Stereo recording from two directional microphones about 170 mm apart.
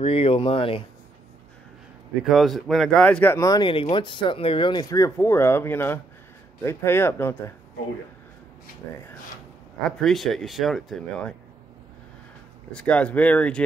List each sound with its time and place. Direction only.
0.0 s speech: 35° left (ahead or behind)
2.2 s speech: centre (ahead or behind)
9.8 s speech: 5° left (ahead or behind)
12.7 s speech: 5° left (ahead or behind)